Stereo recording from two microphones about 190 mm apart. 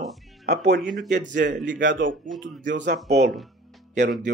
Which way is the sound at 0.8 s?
Centre (ahead or behind).